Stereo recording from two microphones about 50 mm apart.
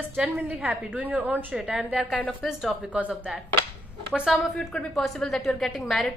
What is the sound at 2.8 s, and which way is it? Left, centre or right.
Speech, right.